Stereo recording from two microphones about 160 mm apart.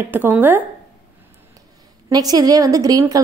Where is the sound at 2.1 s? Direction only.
25° right (ahead or behind).